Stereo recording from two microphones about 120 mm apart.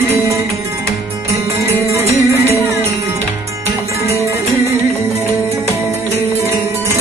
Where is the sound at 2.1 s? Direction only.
25° left (ahead or behind).